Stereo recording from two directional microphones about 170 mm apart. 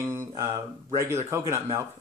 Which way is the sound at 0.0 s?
15° right (ahead or behind).